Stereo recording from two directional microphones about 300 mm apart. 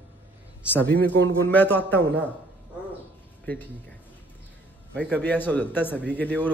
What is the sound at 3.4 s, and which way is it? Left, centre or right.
Speech, centre.